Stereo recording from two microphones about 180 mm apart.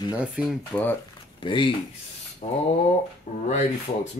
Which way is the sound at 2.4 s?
40° left (ahead or behind).